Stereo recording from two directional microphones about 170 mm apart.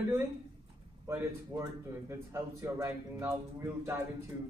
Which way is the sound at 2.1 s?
15° right (ahead or behind).